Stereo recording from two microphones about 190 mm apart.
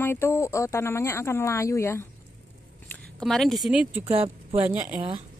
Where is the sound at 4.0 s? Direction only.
30° right (ahead or behind).